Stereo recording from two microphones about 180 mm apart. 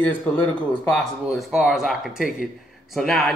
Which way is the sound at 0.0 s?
10° left (ahead or behind).